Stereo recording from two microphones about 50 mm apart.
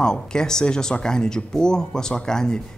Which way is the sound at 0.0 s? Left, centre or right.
Centre.